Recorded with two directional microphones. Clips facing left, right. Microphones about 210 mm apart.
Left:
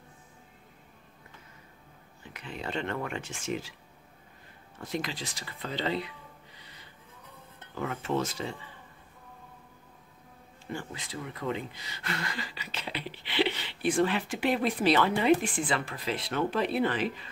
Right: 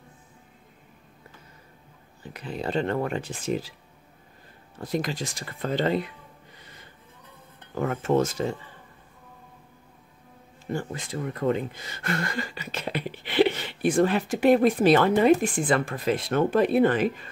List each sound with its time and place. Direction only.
2.2 s speech: 35° right (ahead or behind)
4.7 s speech: 40° right (ahead or behind)
10.7 s speech: 45° right (ahead or behind)